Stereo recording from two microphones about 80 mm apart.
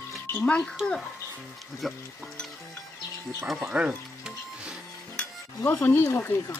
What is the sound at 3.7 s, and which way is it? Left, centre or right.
Music, centre.